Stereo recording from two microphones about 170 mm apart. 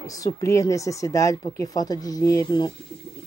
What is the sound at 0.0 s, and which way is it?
Speech, 20° left (ahead or behind).